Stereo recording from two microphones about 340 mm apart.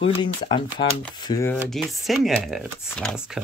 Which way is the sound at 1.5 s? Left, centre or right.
Centre.